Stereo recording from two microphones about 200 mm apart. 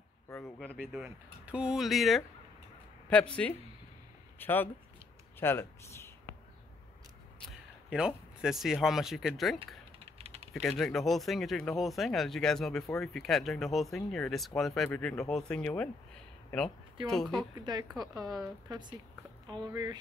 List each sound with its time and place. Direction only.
0.6 s speech: 5° right (ahead or behind)
7.3 s a sound: centre (ahead or behind)
8.8 s speech: centre (ahead or behind)
9.9 s typing: 30° right (ahead or behind)
10.5 s speech: centre (ahead or behind)
17.6 s speech: 20° right (ahead or behind)
18.0 s speech: centre (ahead or behind)
18.4 s speech: 20° right (ahead or behind)